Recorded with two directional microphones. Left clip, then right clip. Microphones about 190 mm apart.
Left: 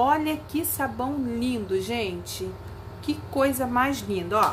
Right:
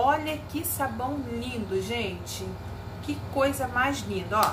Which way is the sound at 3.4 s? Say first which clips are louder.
Left 2 dB; 55° left (ahead or behind).